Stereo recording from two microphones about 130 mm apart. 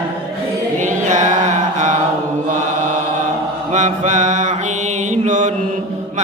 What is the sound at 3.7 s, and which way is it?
Mantra, 70° right (ahead or behind).